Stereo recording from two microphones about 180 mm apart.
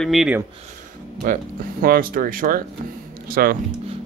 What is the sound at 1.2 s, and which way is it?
Speech, 50° right (ahead or behind).